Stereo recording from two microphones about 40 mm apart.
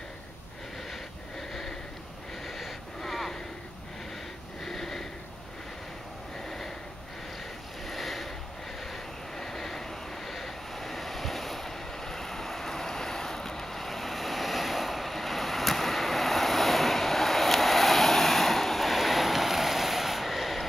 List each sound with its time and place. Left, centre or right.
1.5 s sniff: centre
2.4 s wheeze: centre
4.6 s sniff: centre
6.4 s a sound: centre
7.8 s a sound: centre
8.9 s vehicle: centre